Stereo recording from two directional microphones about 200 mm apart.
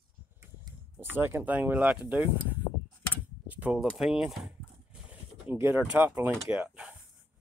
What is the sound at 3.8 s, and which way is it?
Speech, centre (ahead or behind).